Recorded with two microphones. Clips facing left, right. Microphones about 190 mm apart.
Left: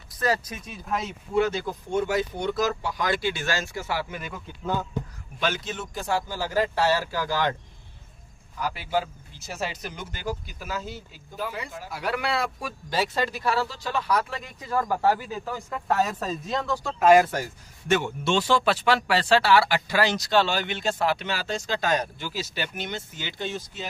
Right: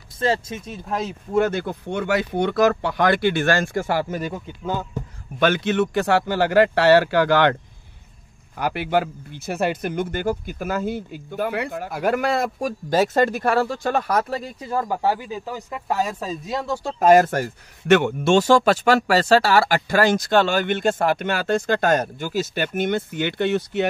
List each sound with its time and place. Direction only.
0.2 s speech: 25° right (ahead or behind)
0.7 s speech: centre (ahead or behind)
1.3 s speech: 55° right (ahead or behind)
4.6 s speech: 5° right (ahead or behind)
5.4 s speech: 65° right (ahead or behind)
8.5 s speech: 65° right (ahead or behind); by 14.7 s 40° right (ahead or behind)
14.8 s speech: 15° right (ahead or behind)
16.8 s speech: 45° right (ahead or behind); by 23.9 s 65° right (ahead or behind)